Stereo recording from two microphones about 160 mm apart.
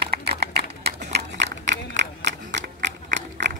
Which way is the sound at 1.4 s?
90° right.